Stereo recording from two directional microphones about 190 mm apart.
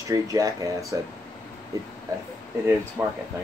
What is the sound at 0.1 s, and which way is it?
Speech, 15° right (ahead or behind).